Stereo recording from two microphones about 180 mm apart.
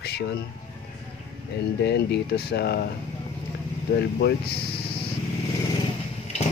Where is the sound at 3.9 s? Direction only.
65° left (ahead or behind).